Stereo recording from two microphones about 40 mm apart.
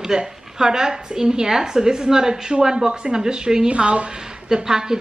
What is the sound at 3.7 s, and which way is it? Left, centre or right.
Speech, right.